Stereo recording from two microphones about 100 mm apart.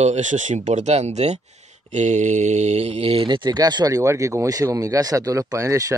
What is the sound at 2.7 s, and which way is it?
Mantra, 90° right.